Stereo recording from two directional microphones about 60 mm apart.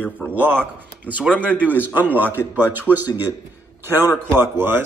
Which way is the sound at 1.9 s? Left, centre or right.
Right.